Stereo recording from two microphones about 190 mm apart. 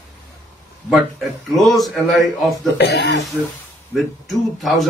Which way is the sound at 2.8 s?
65° left (ahead or behind).